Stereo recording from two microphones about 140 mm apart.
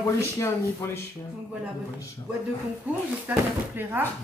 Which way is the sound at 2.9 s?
10° right (ahead or behind).